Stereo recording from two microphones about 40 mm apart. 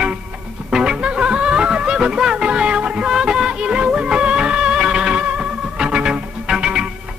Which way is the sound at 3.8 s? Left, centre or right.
Right.